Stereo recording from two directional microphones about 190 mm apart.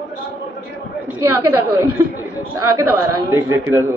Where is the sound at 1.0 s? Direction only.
15° right (ahead or behind).